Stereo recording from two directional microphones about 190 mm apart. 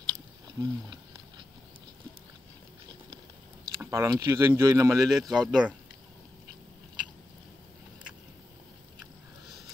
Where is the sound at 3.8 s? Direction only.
15° right (ahead or behind).